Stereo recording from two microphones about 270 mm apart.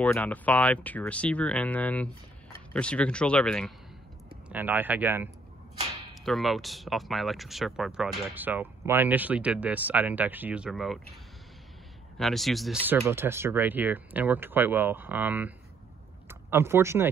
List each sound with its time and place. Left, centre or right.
0.0 s speech: centre
12.2 s speech: centre